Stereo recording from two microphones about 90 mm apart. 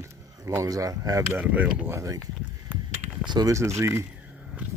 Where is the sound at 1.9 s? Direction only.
35° right (ahead or behind).